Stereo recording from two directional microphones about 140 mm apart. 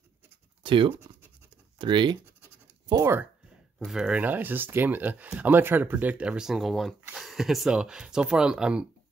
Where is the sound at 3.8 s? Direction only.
5° right (ahead or behind).